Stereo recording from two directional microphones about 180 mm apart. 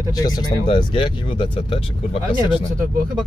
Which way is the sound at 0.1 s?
20° left (ahead or behind).